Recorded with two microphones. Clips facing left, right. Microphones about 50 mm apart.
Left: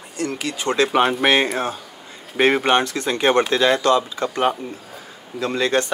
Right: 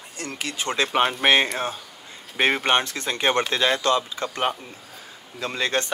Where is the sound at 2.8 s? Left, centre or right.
Left.